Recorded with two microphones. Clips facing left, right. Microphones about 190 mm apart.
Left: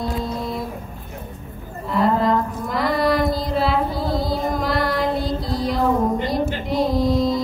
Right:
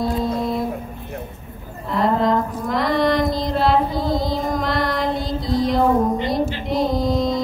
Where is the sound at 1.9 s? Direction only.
Centre (ahead or behind).